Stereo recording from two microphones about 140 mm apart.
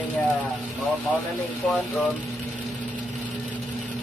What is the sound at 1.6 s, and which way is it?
Speech, 5° left (ahead or behind).